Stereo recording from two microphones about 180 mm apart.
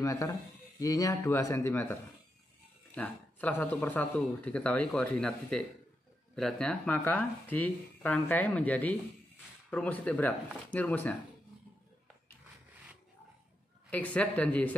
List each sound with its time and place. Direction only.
0.0 s speech: 20° left (ahead or behind)
13.8 s speech: 10° left (ahead or behind)